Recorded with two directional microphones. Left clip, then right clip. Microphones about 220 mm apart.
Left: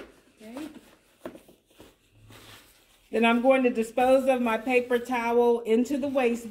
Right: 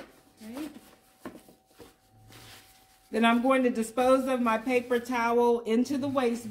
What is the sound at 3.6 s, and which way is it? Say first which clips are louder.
A woman's voice: left 2 dB; 15° right (ahead or behind).